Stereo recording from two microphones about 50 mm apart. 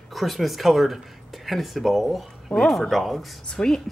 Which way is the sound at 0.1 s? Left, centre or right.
Centre.